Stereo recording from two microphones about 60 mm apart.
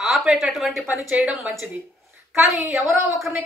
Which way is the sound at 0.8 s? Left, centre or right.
Right.